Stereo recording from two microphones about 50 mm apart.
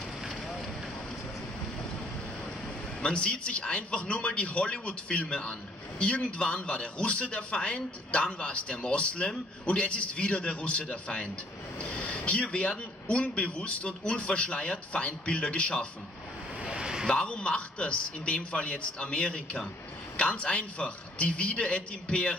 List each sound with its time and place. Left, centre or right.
0.3 s fire: centre
3.0 s speech: left
16.6 s a sound: centre
17.1 s speech: centre